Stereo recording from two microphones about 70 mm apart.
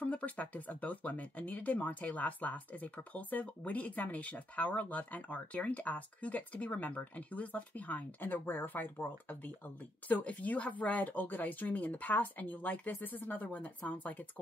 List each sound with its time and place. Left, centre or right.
0.0 s speech: left